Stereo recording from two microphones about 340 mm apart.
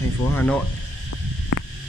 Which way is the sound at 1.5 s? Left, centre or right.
Left.